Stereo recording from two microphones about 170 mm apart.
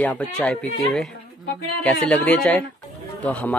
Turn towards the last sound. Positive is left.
turn(degrees=10)  # may be behind; listen again after turning